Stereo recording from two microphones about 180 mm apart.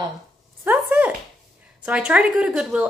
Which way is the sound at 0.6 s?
10° right (ahead or behind).